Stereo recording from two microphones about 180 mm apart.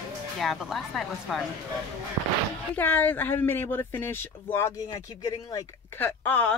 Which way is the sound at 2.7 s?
10° left (ahead or behind).